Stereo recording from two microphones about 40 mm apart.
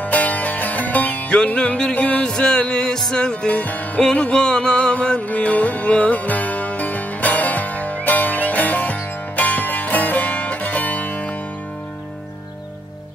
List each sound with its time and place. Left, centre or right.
0.0 s music: left
1.3 s music: left
2.2 s music: centre
3.4 s music: left
4.0 s music: left
5.3 s music: left